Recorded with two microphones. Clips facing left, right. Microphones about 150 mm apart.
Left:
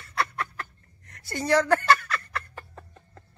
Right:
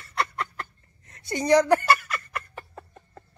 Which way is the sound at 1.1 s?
20° right (ahead or behind).